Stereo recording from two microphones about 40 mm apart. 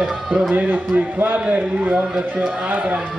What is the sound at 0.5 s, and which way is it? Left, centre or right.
A man's voice, right.